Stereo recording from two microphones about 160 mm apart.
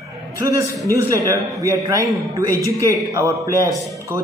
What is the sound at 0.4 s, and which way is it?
A man's voice, 20° right (ahead or behind).